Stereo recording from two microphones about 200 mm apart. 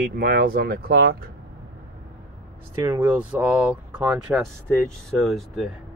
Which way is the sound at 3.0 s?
5° right (ahead or behind).